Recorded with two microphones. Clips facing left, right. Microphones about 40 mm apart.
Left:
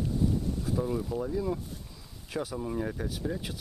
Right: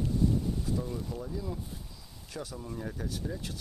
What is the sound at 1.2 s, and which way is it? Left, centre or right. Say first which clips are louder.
Speech: left 7 dB; left.